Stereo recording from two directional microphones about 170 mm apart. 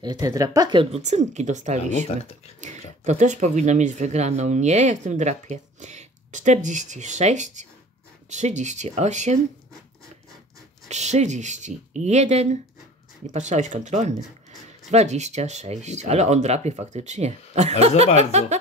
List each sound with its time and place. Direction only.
0.0 s speech: 20° right (ahead or behind)
0.9 s speech: 40° right (ahead or behind)
2.0 s speech: 35° left (ahead or behind)
2.6 s speech: 45° right (ahead or behind)
10.9 s speech: 40° right (ahead or behind)